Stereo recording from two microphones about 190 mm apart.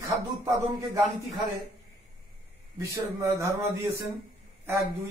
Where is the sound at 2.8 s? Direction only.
15° right (ahead or behind).